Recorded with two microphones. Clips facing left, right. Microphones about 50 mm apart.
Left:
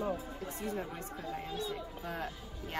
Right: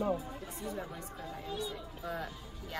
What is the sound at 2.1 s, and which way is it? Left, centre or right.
Speech, left.